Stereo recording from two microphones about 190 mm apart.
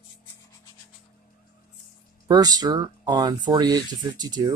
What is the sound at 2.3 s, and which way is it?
Speech, 20° right (ahead or behind).